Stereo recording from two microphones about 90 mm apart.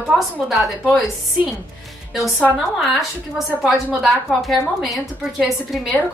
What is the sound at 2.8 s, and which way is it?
A woman's voice, centre (ahead or behind).